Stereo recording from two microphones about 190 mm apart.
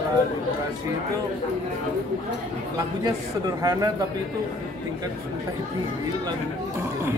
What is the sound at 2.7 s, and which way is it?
A man's voice, 20° right (ahead or behind).